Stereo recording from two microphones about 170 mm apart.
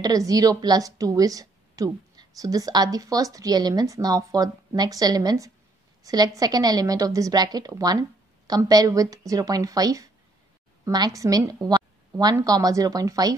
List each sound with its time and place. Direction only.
0.0 s a woman's voice: 20° right (ahead or behind)